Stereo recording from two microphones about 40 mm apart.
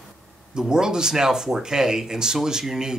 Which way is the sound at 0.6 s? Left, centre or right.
Centre.